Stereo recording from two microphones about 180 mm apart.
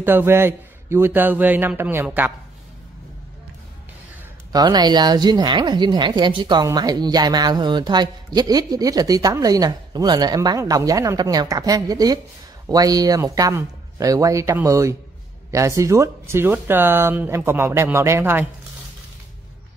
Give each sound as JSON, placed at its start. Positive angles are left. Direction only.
{"t": 0.0, "sound": "speech", "side_deg": -10}
{"t": 4.5, "sound": "a woman's voice", "side_deg": -20}